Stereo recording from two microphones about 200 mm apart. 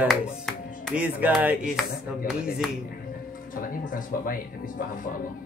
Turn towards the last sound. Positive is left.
turn(degrees=45)  # may be behind; listen again after turning